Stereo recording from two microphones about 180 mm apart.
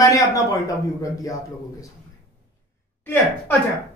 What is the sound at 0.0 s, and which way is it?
Speech, 15° left (ahead or behind).